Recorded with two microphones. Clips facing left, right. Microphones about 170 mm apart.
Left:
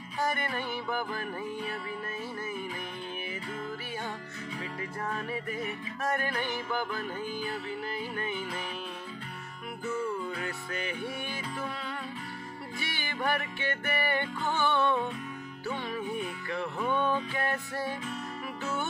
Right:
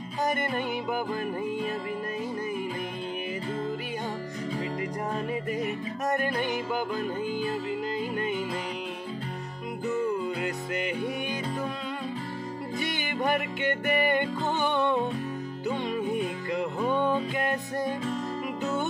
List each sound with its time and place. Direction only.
0.2 s music: 20° right (ahead or behind)
5.6 s music: 20° right (ahead or behind)
9.8 s music: 20° right (ahead or behind)
12.7 s music: 20° right (ahead or behind)